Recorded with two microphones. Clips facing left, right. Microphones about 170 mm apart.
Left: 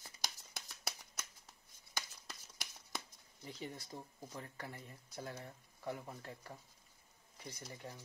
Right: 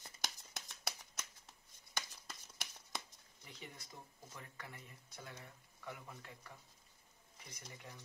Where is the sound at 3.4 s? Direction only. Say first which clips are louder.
Left 8 dB; 35° left (ahead or behind).